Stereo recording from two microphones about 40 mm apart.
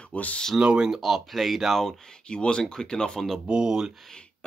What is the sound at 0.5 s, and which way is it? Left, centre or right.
Speech, right.